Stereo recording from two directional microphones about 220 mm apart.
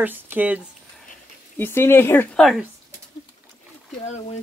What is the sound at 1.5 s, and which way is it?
Speech, 10° left (ahead or behind).